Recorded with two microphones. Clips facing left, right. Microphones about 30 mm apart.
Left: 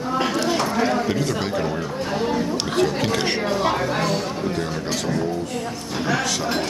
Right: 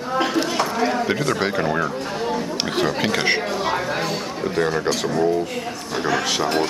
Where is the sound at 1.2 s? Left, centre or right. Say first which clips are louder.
Right 2 dB; right.